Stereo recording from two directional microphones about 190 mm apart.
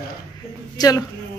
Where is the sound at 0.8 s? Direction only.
20° left (ahead or behind).